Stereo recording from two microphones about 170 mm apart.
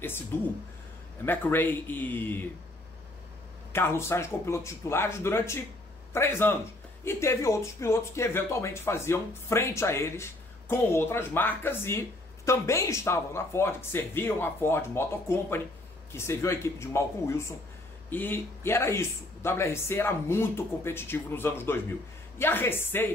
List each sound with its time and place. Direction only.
0.3 s speech: 15° left (ahead or behind)
3.7 s speech: 15° left (ahead or behind)